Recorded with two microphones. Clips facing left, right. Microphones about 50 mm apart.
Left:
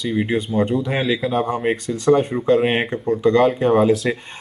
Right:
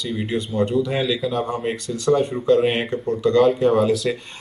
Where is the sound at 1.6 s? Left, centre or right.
Left.